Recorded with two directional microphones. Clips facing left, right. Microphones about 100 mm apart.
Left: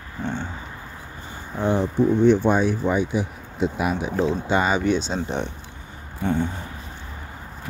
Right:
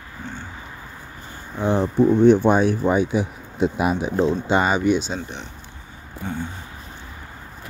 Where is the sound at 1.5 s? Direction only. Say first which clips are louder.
Even; 5° left (ahead or behind).